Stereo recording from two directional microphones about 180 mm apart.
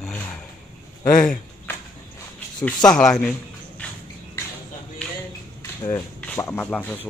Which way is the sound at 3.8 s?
5° left (ahead or behind).